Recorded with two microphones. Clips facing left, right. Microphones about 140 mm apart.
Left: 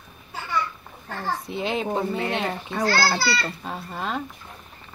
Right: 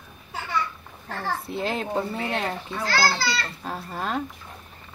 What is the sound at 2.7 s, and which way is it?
Speech, 45° left (ahead or behind).